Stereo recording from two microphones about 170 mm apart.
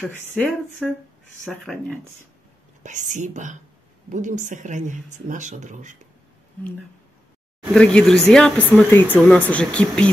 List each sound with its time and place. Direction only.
0.4 s speech: 10° left (ahead or behind)
2.8 s speech: 45° right (ahead or behind)
7.7 s speech: 5° left (ahead or behind)